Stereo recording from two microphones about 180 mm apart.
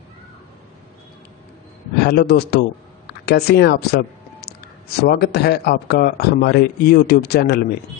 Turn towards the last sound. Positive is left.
turn(degrees=65)  # may be behind; listen again after turning